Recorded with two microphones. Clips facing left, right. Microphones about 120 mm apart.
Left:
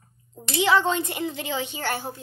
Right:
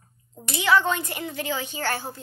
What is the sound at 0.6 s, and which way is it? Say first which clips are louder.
A woman's voice: even; 25° left (ahead or behind).